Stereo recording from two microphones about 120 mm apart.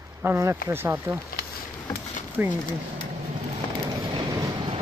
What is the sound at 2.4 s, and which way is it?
Speech, 15° right (ahead or behind).